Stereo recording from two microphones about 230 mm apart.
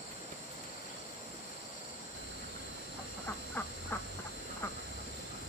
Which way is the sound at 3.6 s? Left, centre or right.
Centre.